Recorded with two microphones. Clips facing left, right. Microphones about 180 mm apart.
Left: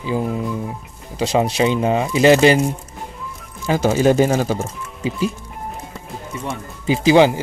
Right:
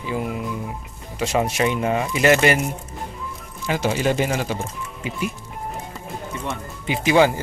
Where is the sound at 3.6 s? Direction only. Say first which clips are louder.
Left 6 dB; 40° left (ahead or behind).